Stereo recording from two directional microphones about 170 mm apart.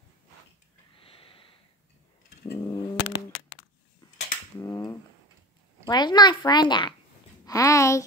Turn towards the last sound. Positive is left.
turn(degrees=20)  # may be behind; listen again after turning